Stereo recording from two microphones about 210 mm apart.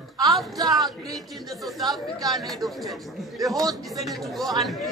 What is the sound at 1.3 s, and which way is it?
Speech, centre (ahead or behind).